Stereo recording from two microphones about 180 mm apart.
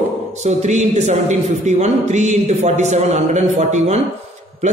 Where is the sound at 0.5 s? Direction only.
40° right (ahead or behind).